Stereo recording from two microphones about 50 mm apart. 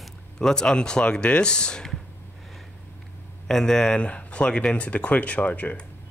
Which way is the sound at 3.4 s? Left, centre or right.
Centre.